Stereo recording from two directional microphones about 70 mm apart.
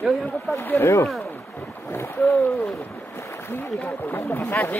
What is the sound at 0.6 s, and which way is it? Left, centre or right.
Speech, left.